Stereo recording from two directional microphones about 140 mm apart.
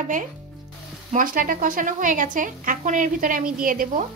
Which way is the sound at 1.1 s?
80° right.